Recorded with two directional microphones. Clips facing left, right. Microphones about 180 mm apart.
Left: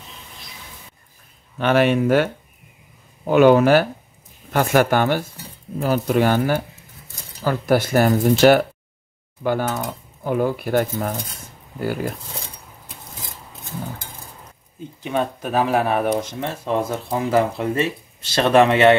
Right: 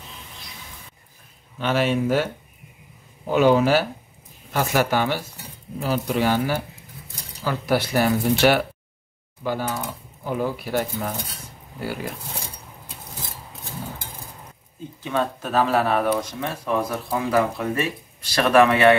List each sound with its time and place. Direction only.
1.6 s speech: 60° left (ahead or behind)
3.3 s speech: 60° left (ahead or behind)
9.4 s speech: 55° left (ahead or behind)
15.0 s speech: 15° left (ahead or behind)